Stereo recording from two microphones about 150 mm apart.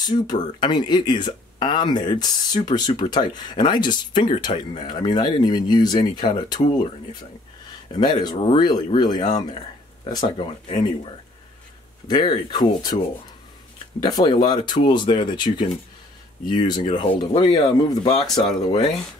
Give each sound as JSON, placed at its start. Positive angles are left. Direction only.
{"t": 0.0, "sound": "speech", "side_deg": 30}
{"t": 7.9, "sound": "speech", "side_deg": 30}
{"t": 12.1, "sound": "speech", "side_deg": 30}
{"t": 13.9, "sound": "speech", "side_deg": 30}
{"t": 16.8, "sound": "speech", "side_deg": 40}
{"t": 17.3, "sound": "speech", "side_deg": 30}